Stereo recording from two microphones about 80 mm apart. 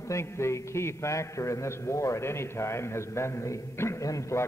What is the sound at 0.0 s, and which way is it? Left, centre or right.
A man's voice, left.